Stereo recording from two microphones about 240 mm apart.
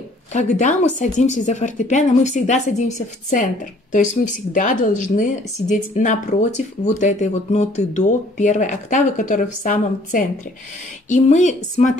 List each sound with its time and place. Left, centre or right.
0.3 s speech: left